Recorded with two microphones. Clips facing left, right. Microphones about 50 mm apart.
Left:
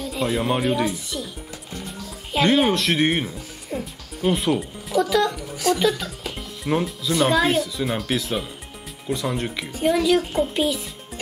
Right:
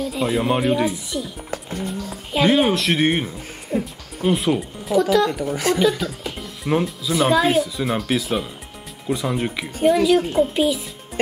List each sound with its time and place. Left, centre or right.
0.0 s speech: centre
1.5 s speech: right
1.9 s speech: centre
5.5 s speech: right
5.8 s speech: centre